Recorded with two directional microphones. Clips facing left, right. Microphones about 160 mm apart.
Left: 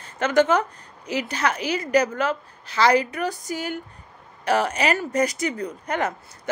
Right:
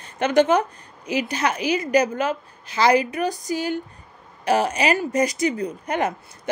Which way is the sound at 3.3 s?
35° right (ahead or behind).